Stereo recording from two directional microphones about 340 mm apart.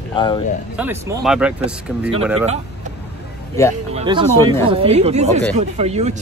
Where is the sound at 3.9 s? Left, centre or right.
Centre.